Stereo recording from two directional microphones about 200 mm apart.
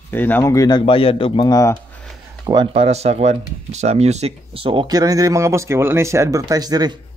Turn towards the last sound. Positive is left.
turn(degrees=-20)  # may be behind; listen again after turning